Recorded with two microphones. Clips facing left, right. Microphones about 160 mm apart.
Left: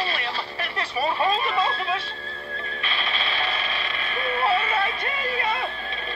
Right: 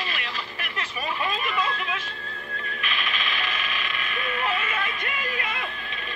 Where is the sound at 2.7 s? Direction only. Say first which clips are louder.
Left 2 dB; 35° left (ahead or behind).